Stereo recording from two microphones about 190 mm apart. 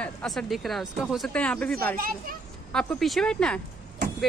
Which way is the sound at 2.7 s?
5° left (ahead or behind).